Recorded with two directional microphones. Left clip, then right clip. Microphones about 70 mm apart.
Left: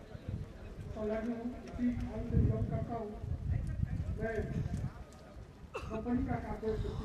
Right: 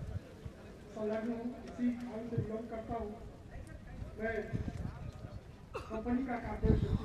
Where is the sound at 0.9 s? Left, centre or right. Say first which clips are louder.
Even; centre.